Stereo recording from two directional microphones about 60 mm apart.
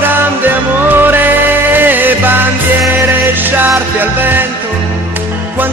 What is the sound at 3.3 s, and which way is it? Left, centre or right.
Music, right.